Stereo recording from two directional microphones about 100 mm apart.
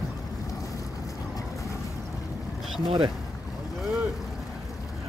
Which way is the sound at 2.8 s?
45° right (ahead or behind).